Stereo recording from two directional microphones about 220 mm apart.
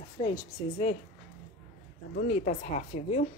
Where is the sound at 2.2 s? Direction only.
30° left (ahead or behind).